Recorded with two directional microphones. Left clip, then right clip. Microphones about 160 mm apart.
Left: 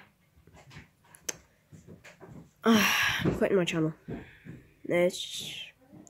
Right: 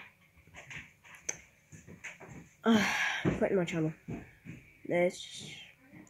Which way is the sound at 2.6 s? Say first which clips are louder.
Left 4 dB; 5° left (ahead or behind).